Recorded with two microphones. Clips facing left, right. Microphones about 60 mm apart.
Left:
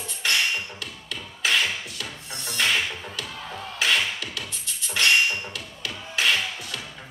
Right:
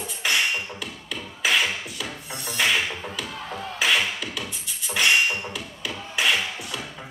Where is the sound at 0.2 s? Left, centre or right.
Centre.